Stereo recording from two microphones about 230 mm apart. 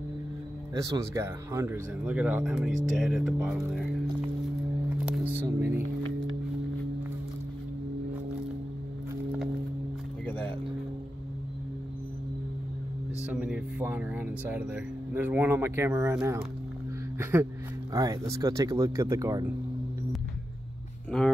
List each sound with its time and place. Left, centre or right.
0.7 s speech: centre
4.8 s music: centre
9.1 s music: centre
10.2 s a sound: centre
13.2 s speech: centre
21.1 s speech: centre